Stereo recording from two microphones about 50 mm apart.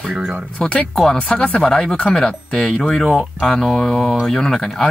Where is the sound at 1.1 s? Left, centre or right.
Centre.